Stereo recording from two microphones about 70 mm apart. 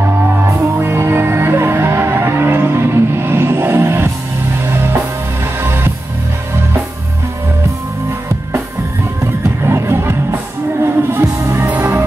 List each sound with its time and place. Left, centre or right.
0.3 s music: right
5.6 s music: right
9.2 s music: right